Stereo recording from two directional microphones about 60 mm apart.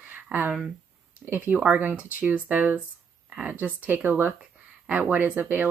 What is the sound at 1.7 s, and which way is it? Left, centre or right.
Speech, right.